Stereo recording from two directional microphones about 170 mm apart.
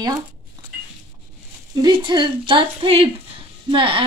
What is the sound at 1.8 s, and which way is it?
A woman's voice, 25° right (ahead or behind).